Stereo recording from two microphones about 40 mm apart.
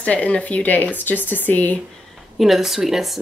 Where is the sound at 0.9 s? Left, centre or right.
Left.